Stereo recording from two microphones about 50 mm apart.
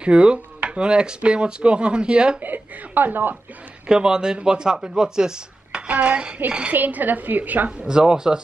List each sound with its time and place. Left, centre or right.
0.0 s speech: right
2.4 s a woman's voice: right
3.8 s speech: centre
5.9 s speech: right
6.7 s a woman's voice: right
7.8 s speech: centre